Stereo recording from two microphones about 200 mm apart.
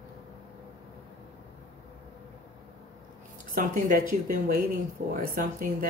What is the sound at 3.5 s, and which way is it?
Speech, 45° right (ahead or behind).